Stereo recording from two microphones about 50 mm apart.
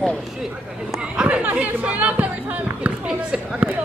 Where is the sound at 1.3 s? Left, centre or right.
Right.